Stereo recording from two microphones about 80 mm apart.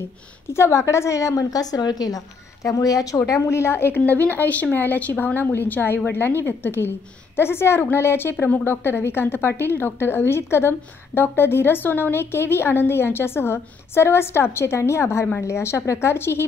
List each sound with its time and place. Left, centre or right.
0.5 s a woman's voice: left
3.3 s a woman's voice: left